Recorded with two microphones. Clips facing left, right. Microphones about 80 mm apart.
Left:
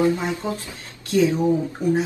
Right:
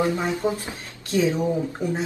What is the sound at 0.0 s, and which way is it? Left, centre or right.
Speech, right.